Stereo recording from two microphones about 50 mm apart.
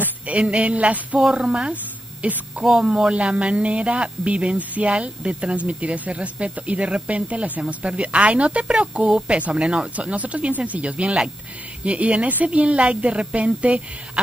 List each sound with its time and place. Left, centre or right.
0.0 s a sound: right
1.3 s speech: right
9.0 s speech: centre